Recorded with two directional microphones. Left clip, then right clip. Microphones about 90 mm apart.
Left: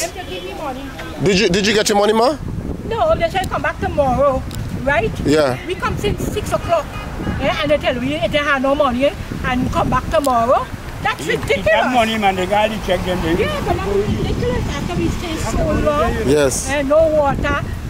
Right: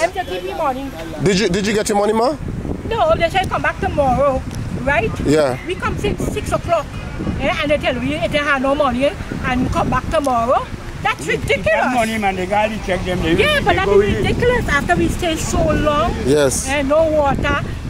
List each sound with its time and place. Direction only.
1.2 s speech: centre (ahead or behind)
14.2 s speech: 35° right (ahead or behind)
15.9 s speech: centre (ahead or behind)